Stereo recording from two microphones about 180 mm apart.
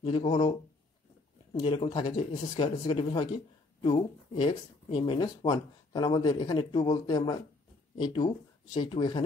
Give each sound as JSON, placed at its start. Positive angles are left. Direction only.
{"t": 0.0, "sound": "speech", "side_deg": 30}
{"t": 1.6, "sound": "speech", "side_deg": 30}